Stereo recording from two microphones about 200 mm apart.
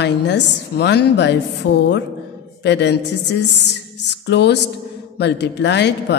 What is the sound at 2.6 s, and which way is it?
Speech, 60° left (ahead or behind).